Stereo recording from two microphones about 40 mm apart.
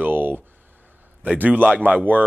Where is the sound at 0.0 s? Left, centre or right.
Right.